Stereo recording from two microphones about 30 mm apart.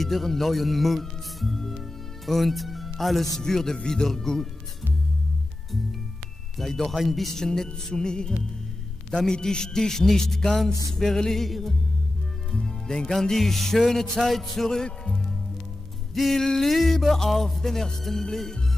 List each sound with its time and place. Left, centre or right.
0.0 s speech: centre
1.6 s music: centre
3.3 s music: centre
6.5 s speech: centre
7.3 s music: centre
12.6 s music: left
13.1 s music: centre
14.9 s speech: left
16.3 s music: centre
17.3 s speech: centre
17.6 s music: centre